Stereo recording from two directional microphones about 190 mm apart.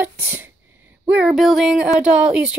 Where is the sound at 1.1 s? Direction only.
5° right (ahead or behind).